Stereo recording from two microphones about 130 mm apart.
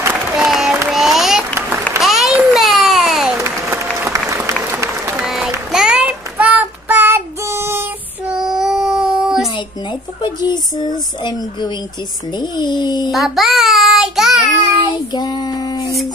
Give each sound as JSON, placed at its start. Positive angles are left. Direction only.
{"t": 0.4, "sound": "applause", "side_deg": -5}
{"t": 2.0, "sound": "a sound", "side_deg": 0}
{"t": 3.3, "sound": "applause", "side_deg": -20}
{"t": 5.2, "sound": "applause", "side_deg": -5}
{"t": 5.7, "sound": "child singing", "side_deg": -5}
{"t": 8.3, "sound": "child singing", "side_deg": -5}
{"t": 10.2, "sound": "a sound", "side_deg": 35}
{"t": 12.4, "sound": "speech", "side_deg": 35}
{"t": 13.1, "sound": "child singing", "side_deg": 0}
{"t": 15.1, "sound": "a sound", "side_deg": 30}